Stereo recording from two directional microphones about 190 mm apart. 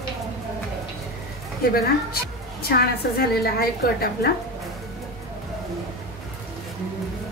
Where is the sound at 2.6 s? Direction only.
55° left (ahead or behind).